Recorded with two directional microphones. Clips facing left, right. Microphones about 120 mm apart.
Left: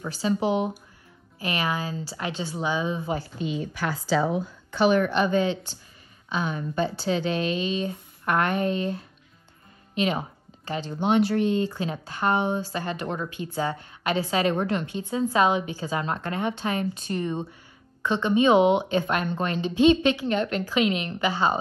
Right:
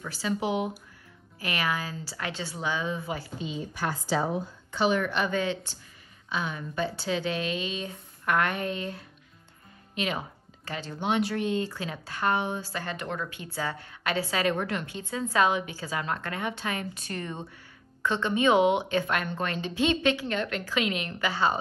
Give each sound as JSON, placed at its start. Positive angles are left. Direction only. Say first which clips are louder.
{"t": 0.0, "sound": "speech", "louder": "left 5 dB", "side_deg": 25}
{"t": 3.3, "sound": "a woman's voice", "louder": "left 5 dB", "side_deg": 65}
{"t": 5.1, "sound": "speech", "louder": "left 5 dB", "side_deg": 30}
{"t": 6.3, "sound": "speech", "louder": "left 4 dB", "side_deg": 40}
{"t": 9.9, "sound": "speech", "louder": "left 6 dB", "side_deg": 30}
{"t": 11.1, "sound": "speech", "louder": "left 5 dB", "side_deg": 40}
{"t": 11.6, "sound": "speech", "louder": "left 6 dB", "side_deg": 25}
{"t": 15.0, "sound": "speech", "louder": "left 3 dB", "side_deg": 20}